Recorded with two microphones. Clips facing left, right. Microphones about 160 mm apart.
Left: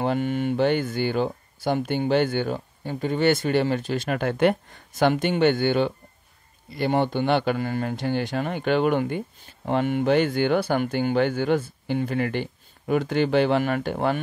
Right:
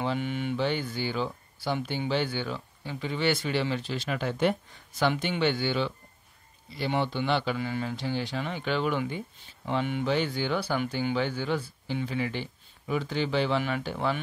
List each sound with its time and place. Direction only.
0.0 s speech: 50° left (ahead or behind)